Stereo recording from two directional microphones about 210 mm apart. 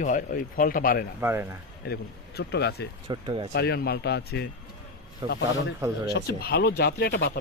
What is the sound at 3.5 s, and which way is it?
Speech, 50° left (ahead or behind).